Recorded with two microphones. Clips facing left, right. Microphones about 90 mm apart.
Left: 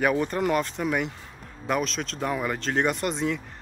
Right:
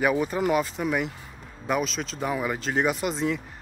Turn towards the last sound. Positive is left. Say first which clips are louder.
# even
turn(degrees=0)  # may be behind; listen again after turning